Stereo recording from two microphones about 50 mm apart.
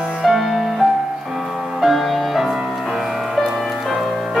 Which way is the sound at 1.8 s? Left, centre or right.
Centre.